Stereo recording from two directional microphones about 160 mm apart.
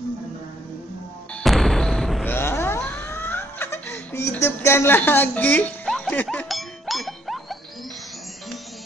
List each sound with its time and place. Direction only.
1.4 s music: centre (ahead or behind)
2.2 s laughter: 15° left (ahead or behind)